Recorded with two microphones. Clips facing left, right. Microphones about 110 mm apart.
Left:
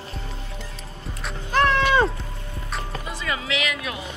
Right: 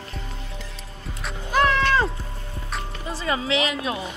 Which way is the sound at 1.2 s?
5° right (ahead or behind).